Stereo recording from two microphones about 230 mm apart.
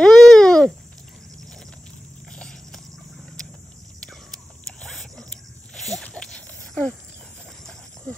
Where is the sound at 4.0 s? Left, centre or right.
Centre.